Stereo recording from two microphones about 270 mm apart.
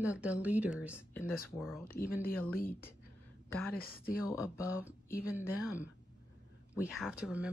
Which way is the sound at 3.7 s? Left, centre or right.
Left.